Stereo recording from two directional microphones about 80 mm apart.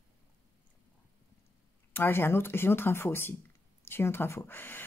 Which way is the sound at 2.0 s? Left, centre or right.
Left.